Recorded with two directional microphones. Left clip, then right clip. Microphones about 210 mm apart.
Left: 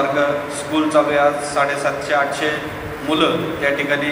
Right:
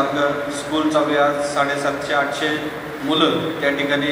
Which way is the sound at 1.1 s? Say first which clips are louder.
Left 1 dB; 45° left (ahead or behind).